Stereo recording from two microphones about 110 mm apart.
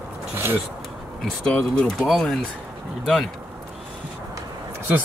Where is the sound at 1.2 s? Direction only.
5° left (ahead or behind).